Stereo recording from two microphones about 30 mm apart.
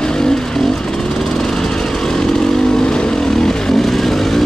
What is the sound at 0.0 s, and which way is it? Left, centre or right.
Vehicle, left.